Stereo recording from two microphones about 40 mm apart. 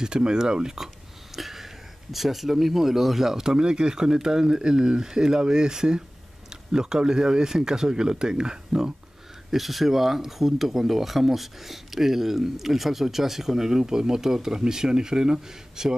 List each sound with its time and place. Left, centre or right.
0.0 s speech: centre
1.3 s a sound: centre
2.1 s speech: centre; by 8.9 s right
9.5 s speech: centre